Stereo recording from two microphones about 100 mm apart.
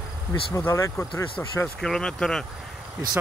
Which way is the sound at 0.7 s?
30° left (ahead or behind).